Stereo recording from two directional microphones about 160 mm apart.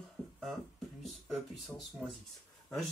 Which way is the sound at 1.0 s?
Centre (ahead or behind).